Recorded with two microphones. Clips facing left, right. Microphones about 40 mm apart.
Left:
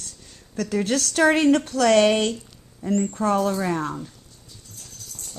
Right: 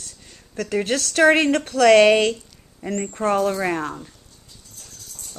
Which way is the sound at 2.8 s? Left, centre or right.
Right.